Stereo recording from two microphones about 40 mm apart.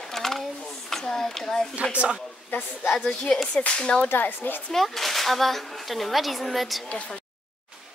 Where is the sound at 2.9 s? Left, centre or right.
Centre.